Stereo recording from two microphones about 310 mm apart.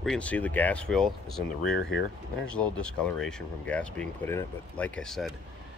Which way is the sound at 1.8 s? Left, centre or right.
Left.